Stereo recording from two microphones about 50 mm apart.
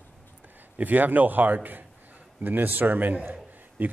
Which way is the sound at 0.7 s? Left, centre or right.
Right.